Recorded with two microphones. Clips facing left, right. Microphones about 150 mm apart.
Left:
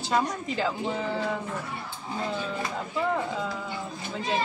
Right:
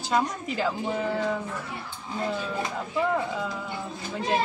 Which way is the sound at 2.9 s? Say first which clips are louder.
Right 2 dB; centre (ahead or behind).